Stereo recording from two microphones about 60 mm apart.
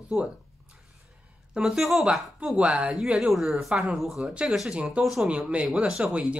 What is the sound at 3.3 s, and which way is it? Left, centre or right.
A woman's voice, centre.